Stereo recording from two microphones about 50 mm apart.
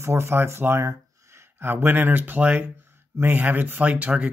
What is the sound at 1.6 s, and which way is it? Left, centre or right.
Speech, right.